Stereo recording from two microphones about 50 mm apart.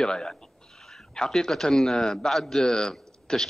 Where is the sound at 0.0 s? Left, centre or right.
Centre.